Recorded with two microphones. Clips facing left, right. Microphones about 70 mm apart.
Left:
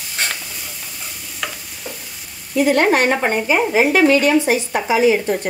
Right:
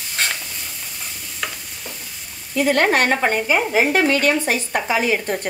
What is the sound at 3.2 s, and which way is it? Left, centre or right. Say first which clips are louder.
Speech: left 2 dB; left.